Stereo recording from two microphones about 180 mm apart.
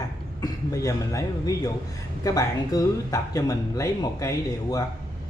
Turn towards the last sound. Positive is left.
turn(degrees=20)  # may be behind; listen again after turning